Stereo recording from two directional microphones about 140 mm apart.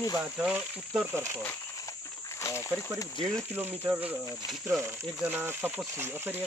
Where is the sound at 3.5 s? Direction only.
15° right (ahead or behind).